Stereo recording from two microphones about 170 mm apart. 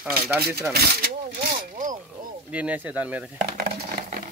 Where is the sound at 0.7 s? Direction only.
65° right (ahead or behind).